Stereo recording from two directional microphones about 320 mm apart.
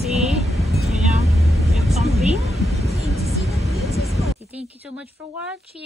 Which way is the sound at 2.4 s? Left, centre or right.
Centre.